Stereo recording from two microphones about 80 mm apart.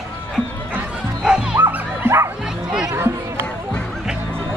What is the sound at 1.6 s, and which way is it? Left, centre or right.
Music, right.